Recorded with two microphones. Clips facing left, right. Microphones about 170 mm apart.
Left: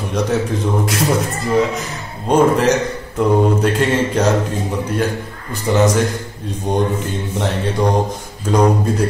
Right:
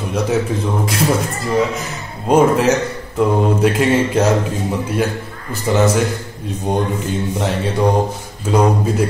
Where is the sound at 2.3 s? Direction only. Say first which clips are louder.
Right 1 dB; 5° right (ahead or behind).